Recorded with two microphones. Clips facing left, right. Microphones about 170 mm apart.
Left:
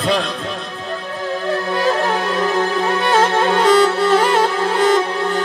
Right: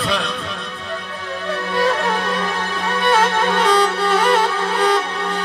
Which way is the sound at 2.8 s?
30° left (ahead or behind).